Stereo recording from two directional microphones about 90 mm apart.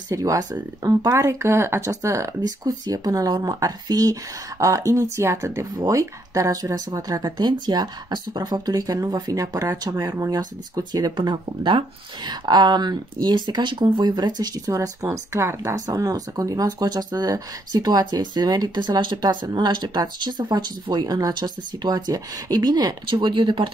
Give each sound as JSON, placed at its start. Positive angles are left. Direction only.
{"t": 0.1, "sound": "speech", "side_deg": -40}
{"t": 10.8, "sound": "speech", "side_deg": -50}
{"t": 11.1, "sound": "speech", "side_deg": -65}
{"t": 12.3, "sound": "speech", "side_deg": -50}
{"t": 23.1, "sound": "speech", "side_deg": -65}